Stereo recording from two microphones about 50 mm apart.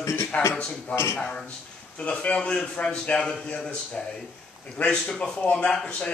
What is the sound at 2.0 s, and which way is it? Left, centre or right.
A man's voice, left.